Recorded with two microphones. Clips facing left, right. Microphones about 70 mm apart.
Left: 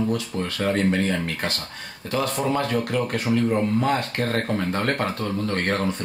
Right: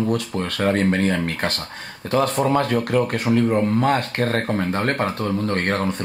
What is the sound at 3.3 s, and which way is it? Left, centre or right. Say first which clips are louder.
Speech: right 3 dB; right.